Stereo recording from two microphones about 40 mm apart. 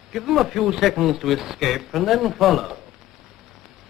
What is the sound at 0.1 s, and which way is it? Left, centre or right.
Speech, centre.